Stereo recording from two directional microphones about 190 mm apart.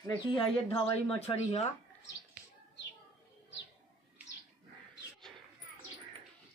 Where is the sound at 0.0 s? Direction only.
25° left (ahead or behind).